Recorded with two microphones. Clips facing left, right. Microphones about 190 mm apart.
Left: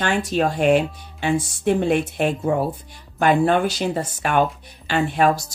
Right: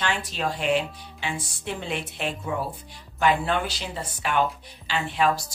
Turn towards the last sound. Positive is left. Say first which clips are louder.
# left 6 dB
turn(degrees=45)  # may be behind; listen again after turning